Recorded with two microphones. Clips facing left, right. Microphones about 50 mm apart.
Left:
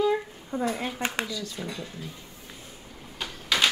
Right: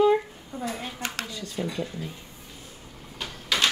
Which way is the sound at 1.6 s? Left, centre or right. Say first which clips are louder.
Right 9 dB; right.